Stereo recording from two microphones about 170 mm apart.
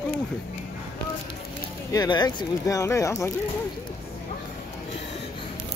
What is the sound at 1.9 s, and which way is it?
Speech, 25° left (ahead or behind).